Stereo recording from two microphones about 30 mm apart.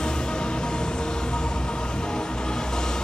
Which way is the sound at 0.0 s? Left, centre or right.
Left.